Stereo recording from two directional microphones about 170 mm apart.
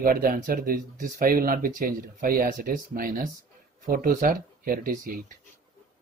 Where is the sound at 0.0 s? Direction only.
60° right (ahead or behind).